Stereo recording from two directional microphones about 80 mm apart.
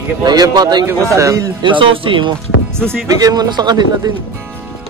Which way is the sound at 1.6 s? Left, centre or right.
Right.